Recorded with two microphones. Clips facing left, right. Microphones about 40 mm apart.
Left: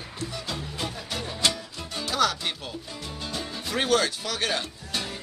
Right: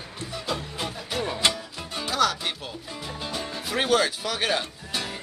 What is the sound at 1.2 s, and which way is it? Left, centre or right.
Music, right.